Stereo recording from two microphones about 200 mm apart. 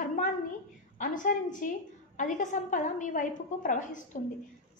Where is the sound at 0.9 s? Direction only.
40° left (ahead or behind).